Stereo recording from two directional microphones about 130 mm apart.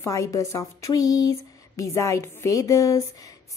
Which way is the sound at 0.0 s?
25° left (ahead or behind).